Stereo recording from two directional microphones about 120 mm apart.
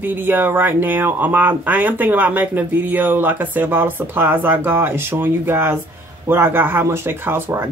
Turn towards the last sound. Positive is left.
turn(degrees=-20)  # may be behind; listen again after turning